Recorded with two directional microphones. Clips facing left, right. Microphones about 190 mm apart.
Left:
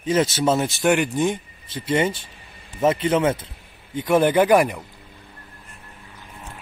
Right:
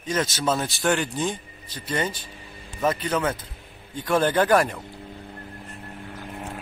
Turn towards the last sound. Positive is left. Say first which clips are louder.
# right 8 dB
turn(degrees=-55)  # may be behind; listen again after turning